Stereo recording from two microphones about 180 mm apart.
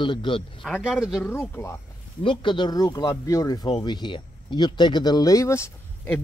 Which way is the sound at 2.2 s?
25° left (ahead or behind).